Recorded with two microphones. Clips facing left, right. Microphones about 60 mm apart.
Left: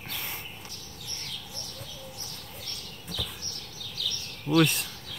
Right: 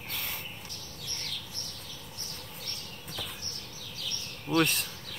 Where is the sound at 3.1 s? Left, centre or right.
Right.